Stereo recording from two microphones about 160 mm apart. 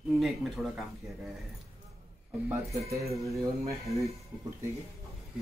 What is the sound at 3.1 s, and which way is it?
Speech, 20° right (ahead or behind).